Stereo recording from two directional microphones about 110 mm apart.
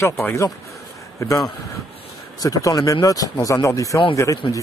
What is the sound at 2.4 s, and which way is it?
Speech, 30° left (ahead or behind).